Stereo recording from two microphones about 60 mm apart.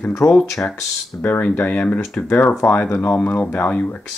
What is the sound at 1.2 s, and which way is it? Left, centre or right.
Speech, left.